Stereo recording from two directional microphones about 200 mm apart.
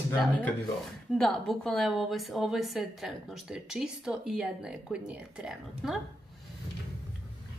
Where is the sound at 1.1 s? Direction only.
Centre (ahead or behind).